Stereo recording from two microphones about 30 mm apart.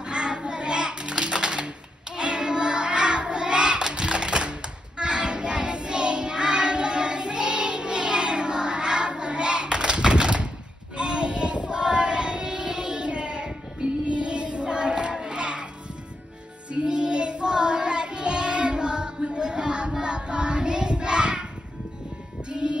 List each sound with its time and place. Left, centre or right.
0.0 s a sound: right
2.1 s child singing: right
11.8 s child singing: right
13.7 s music: right
16.9 s child singing: right
22.5 s music: right